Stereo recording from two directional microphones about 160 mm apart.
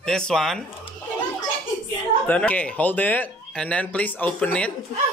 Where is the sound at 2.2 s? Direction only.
10° left (ahead or behind).